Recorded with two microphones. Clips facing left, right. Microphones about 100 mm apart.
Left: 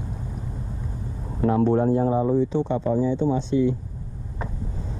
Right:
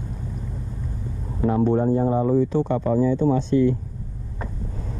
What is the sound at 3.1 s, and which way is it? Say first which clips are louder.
Speech: right 3 dB; 50° right (ahead or behind).